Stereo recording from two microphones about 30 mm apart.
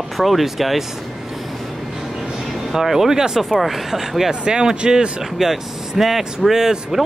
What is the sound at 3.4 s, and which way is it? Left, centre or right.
Speech, centre.